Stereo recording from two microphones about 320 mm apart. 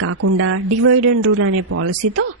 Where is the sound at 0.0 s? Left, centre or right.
Right.